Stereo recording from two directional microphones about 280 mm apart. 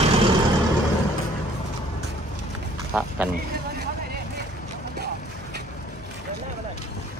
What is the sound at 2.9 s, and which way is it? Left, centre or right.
Honk, centre.